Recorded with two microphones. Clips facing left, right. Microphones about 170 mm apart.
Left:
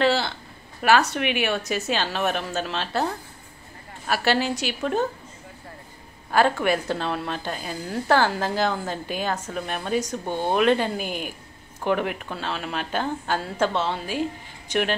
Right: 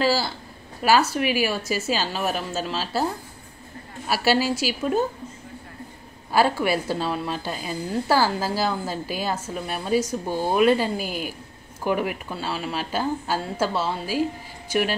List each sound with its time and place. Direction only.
0.0 s a woman's voice: 5° right (ahead or behind)
4.1 s a woman's voice: 5° right (ahead or behind)
6.3 s a woman's voice: 5° right (ahead or behind)